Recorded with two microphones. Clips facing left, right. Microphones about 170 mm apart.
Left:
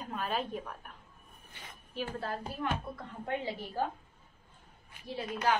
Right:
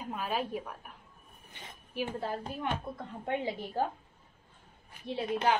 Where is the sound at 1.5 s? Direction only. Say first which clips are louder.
Right 2 dB; 20° right (ahead or behind).